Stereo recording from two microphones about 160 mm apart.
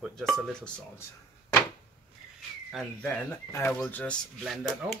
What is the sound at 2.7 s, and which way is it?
Speech, centre (ahead or behind).